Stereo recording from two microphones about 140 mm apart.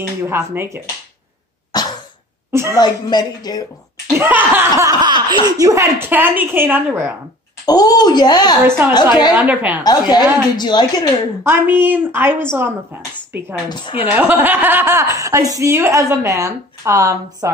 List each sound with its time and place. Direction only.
0.2 s speech: 15° right (ahead or behind)
2.5 s speech: 20° right (ahead or behind)
2.8 s speech: 30° left (ahead or behind)
4.2 s speech: 15° right (ahead or behind)
5.0 s speech: 30° right (ahead or behind); by 7.2 s 15° right (ahead or behind)
7.6 s speech: 25° left (ahead or behind)
8.6 s speech: 15° right (ahead or behind)
8.9 s a woman's voice: 30° left (ahead or behind)
9.3 s speech: 10° right (ahead or behind)
9.8 s a woman's voice: 30° left (ahead or behind)
11.4 s speech: 15° right (ahead or behind)